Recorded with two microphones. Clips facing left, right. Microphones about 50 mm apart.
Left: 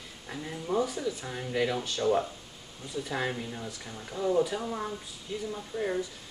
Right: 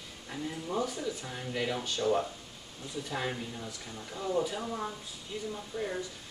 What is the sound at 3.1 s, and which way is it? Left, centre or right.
Speech, centre.